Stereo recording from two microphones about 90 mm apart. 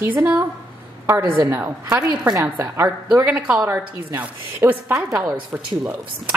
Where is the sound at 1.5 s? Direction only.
20° right (ahead or behind).